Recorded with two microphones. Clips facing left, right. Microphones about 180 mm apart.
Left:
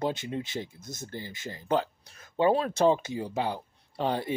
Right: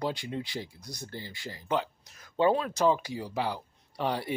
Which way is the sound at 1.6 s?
35° left (ahead or behind).